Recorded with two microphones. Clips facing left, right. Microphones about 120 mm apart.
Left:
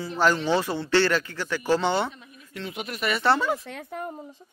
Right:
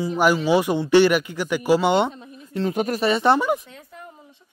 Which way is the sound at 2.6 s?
45° right (ahead or behind).